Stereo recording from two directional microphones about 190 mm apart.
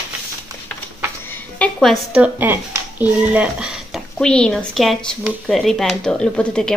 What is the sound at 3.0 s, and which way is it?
Speech, 5° right (ahead or behind).